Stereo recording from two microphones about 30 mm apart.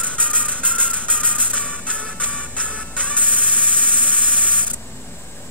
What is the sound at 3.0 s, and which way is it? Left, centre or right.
Electric toothbrush, right.